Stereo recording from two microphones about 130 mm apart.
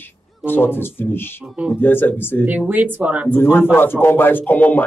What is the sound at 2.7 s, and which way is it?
Speech, 15° right (ahead or behind).